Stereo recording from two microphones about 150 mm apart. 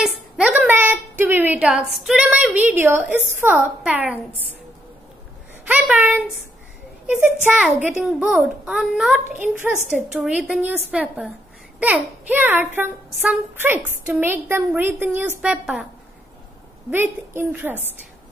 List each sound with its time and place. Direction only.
0.0 s a woman's voice: 10° right (ahead or behind)
5.7 s a sound: 10° right (ahead or behind)
7.1 s a woman's voice: 10° right (ahead or behind)
16.9 s a woman's voice: 15° right (ahead or behind)